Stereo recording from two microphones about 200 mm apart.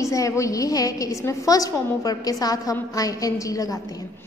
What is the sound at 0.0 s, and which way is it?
A woman's voice, 15° left (ahead or behind).